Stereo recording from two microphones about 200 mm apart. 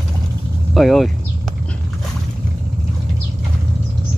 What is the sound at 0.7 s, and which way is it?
Speech, centre (ahead or behind).